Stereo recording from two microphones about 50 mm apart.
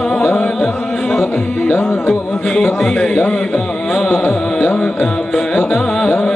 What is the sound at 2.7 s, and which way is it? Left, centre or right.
Music, centre.